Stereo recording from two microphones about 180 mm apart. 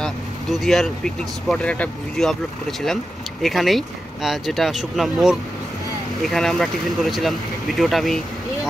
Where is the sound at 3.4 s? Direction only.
Centre (ahead or behind).